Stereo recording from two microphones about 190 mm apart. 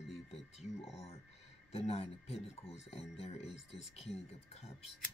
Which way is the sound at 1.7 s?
35° left (ahead or behind).